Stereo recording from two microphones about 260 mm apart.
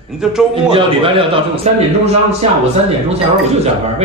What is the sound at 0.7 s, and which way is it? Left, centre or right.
A man's voice, right.